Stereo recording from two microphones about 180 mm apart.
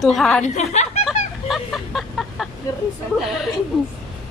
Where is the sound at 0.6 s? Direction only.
40° left (ahead or behind).